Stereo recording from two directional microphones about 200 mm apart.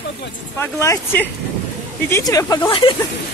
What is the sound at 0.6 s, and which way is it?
Speech, 10° left (ahead or behind).